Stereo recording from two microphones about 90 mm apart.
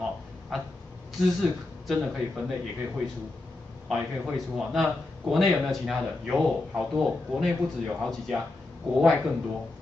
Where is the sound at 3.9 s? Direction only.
Centre (ahead or behind).